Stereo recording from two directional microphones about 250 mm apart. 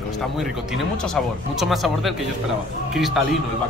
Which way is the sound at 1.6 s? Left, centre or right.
Centre.